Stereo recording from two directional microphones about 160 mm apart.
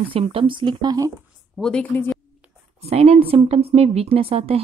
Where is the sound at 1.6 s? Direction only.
10° left (ahead or behind).